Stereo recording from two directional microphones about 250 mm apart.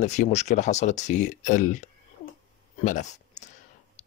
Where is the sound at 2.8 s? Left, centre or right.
Left.